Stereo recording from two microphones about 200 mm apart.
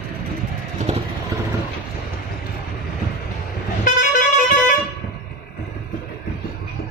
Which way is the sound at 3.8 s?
40° left (ahead or behind).